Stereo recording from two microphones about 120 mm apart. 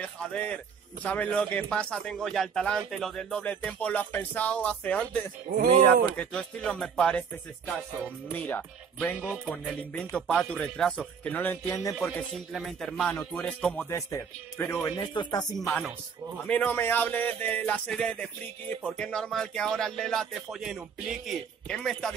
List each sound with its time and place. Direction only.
0.2 s speech: 10° left (ahead or behind)
5.5 s speech: 50° right (ahead or behind)
6.1 s speech: 10° left (ahead or behind)
8.3 s speech: 15° left (ahead or behind)
12.5 s speech: centre (ahead or behind)
13.8 s speech: 25° left (ahead or behind)
15.0 s speech: 35° left (ahead or behind)
16.4 s speech: 15° left (ahead or behind)